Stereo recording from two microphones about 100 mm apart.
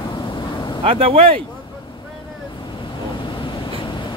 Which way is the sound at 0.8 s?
70° right (ahead or behind).